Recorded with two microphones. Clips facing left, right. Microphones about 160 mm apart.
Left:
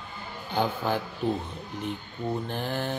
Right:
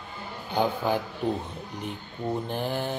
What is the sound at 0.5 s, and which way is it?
Mantra, 15° right (ahead or behind).